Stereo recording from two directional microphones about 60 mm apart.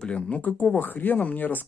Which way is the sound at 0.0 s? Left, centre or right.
Centre.